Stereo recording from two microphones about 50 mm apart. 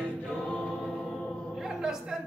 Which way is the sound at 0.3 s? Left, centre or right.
Left.